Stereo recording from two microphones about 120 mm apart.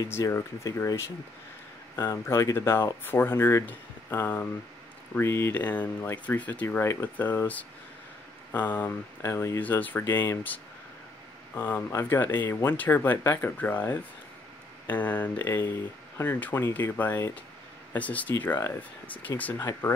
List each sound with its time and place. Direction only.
0.0 s speech: 25° left (ahead or behind)